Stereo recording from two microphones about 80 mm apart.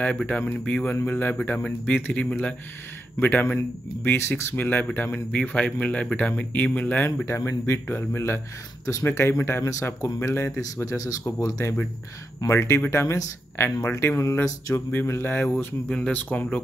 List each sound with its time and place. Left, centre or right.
0.4 s speech: left
7.2 s speech: left
13.0 s speech: left; by 16.6 s centre